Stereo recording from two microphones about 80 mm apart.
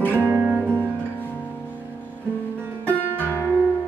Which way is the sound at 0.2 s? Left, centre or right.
Right.